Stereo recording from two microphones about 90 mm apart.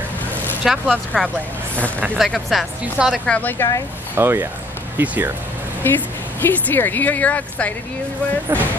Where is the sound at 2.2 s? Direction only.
Centre (ahead or behind).